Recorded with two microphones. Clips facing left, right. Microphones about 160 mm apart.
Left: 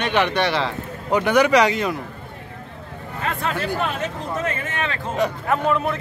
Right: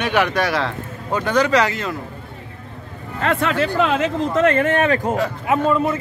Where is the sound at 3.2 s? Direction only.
80° right; by 5.0 s 50° right (ahead or behind).